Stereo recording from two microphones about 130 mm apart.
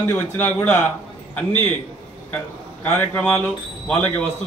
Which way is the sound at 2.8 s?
10° left (ahead or behind).